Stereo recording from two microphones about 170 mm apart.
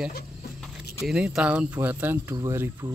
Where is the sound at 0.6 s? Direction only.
5° right (ahead or behind).